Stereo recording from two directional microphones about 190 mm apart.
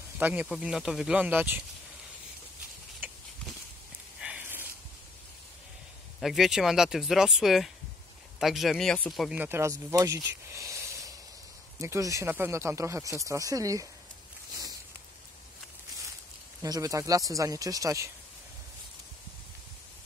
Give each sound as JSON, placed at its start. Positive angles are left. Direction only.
{"t": 0.2, "sound": "speech", "side_deg": -10}
{"t": 4.2, "sound": "a sound", "side_deg": -10}
{"t": 6.2, "sound": "speech", "side_deg": 0}
{"t": 16.6, "sound": "speech", "side_deg": -20}